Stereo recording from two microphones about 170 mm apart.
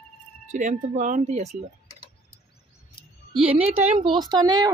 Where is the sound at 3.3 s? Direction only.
35° right (ahead or behind).